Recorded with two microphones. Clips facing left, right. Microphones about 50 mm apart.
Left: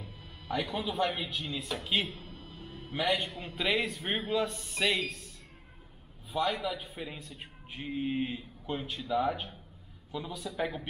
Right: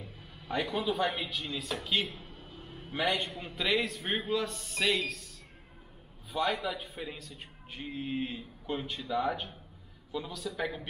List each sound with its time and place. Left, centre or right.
0.5 s a man's voice: centre
2.4 s a sound: centre
2.9 s a man's voice: centre
6.3 s a man's voice: centre
8.7 s a man's voice: centre